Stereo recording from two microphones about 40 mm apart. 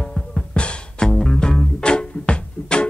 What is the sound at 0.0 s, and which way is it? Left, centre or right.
Music, centre.